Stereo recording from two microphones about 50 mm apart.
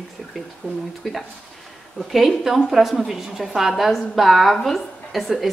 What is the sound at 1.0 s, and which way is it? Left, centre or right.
A woman's voice, centre.